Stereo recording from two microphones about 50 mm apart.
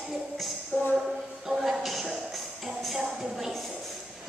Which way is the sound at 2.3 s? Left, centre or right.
Centre.